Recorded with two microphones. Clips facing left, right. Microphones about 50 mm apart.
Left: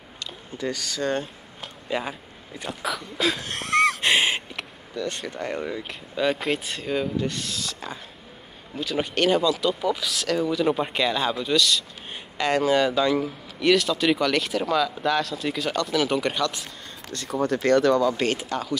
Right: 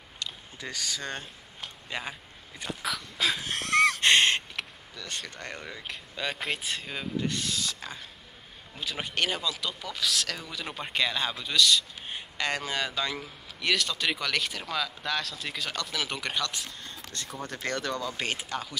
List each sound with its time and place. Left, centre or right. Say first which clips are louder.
0.2 s speech: left 8 dB; centre